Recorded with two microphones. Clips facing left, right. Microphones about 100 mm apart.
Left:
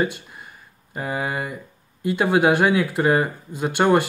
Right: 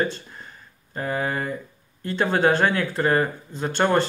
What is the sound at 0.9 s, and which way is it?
Speech, 10° left (ahead or behind).